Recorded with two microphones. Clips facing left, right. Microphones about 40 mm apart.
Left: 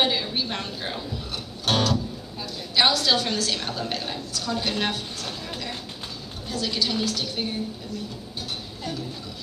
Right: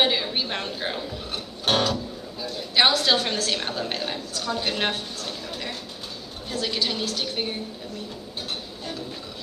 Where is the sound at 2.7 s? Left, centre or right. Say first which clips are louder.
Right 1 dB; right.